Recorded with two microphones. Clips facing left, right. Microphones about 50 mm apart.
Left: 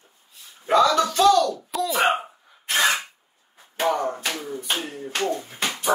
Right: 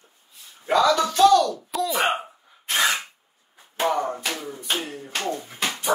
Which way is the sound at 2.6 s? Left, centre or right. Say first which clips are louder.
Left 1 dB; centre.